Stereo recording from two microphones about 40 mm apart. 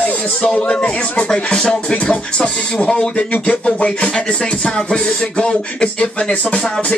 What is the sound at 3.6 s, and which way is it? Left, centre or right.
Speech, left.